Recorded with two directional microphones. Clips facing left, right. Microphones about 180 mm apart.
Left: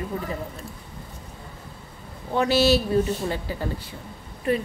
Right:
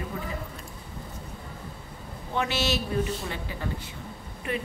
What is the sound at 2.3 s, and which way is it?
Speech, 35° left (ahead or behind).